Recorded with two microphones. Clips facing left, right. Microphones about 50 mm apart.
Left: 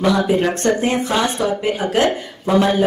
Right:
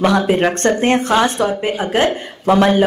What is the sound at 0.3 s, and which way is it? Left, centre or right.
Speech, right.